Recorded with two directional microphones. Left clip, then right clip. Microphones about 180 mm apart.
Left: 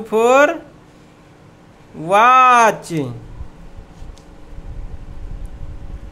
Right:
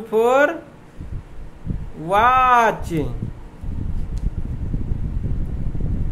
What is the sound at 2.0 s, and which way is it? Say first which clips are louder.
A man's voice: left 5 dB; 25° left (ahead or behind).